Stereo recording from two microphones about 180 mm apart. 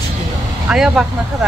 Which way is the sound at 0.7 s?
5° right (ahead or behind).